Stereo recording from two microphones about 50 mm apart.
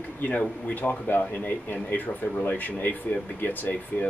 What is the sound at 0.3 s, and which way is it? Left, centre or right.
Speech, left.